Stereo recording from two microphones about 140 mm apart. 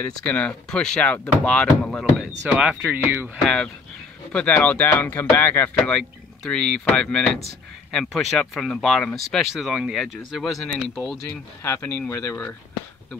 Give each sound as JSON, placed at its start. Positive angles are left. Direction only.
{"t": 0.0, "sound": "speech", "side_deg": 10}
{"t": 3.4, "sound": "speech", "side_deg": 5}
{"t": 11.6, "sound": "speech", "side_deg": 20}